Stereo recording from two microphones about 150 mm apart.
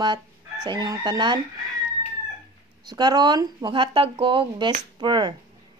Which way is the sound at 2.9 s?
25° right (ahead or behind).